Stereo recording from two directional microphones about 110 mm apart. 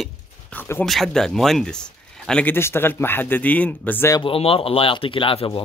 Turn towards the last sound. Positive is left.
turn(degrees=55)  # may be behind; listen again after turning